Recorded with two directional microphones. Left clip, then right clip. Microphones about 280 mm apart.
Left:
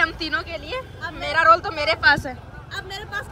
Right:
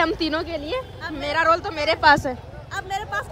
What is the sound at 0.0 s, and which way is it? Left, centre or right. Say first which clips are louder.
Speech: even; centre.